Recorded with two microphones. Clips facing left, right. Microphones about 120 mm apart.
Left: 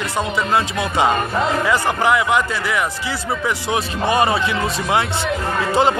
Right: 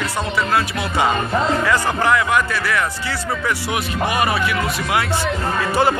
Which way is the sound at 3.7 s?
30° left (ahead or behind).